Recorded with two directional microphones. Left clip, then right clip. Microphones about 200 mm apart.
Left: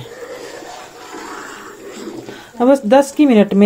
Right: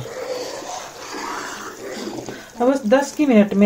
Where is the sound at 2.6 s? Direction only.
50° left (ahead or behind).